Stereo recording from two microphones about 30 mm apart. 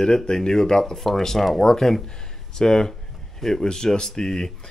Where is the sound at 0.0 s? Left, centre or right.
Left.